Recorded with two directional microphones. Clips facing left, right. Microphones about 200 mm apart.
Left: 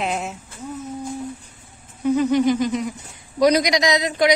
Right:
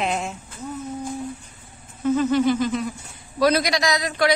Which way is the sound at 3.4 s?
20° left (ahead or behind).